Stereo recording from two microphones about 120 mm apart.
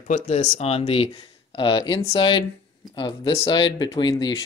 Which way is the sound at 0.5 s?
65° left (ahead or behind).